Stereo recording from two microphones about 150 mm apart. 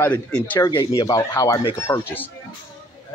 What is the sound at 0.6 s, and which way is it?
Speech, 20° left (ahead or behind).